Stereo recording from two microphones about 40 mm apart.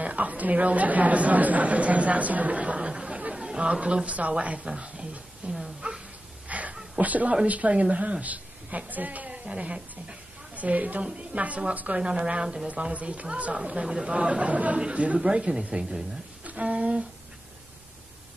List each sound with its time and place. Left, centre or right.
0.0 s a woman's voice: right
3.3 s chatter: right
3.8 s a woman's voice: right
5.4 s a sound: right
7.0 s a woman's voice: right
12.0 s a woman's voice: right
13.6 s a woman's voice: right
16.4 s speech: right